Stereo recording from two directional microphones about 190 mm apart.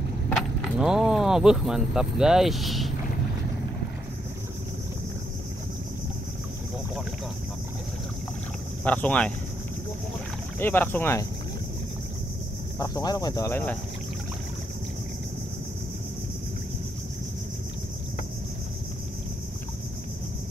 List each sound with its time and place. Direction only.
0.3 s speech: centre (ahead or behind)
8.8 s speech: 5° left (ahead or behind)
10.6 s speech: 10° left (ahead or behind)
12.7 s speech: 20° left (ahead or behind)